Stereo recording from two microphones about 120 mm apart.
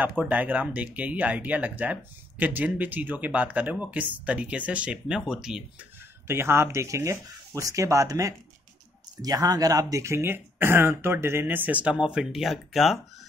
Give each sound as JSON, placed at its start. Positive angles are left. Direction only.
{"t": 0.0, "sound": "speech", "side_deg": -15}
{"t": 6.2, "sound": "speech", "side_deg": -20}